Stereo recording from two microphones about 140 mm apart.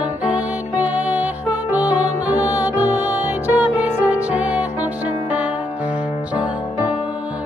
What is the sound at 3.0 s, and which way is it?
Music, 15° right (ahead or behind).